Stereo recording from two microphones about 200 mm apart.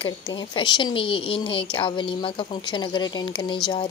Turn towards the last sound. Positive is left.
turn(degrees=25)  # may be behind; listen again after turning